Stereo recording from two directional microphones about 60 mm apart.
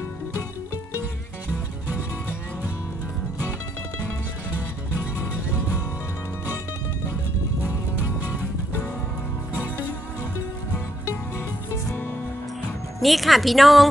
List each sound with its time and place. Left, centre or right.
13.0 s a woman's voice: centre